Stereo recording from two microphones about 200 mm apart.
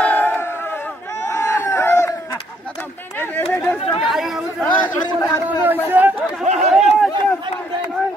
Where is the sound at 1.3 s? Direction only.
15° left (ahead or behind).